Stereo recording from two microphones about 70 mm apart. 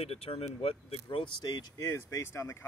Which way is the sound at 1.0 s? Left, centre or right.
Left.